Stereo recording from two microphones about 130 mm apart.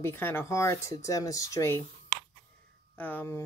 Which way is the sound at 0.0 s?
15° left (ahead or behind).